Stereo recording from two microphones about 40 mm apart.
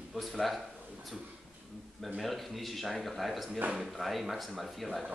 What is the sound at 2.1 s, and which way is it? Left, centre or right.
Speech, centre.